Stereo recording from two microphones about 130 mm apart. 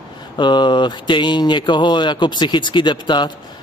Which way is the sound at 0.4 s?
35° left (ahead or behind).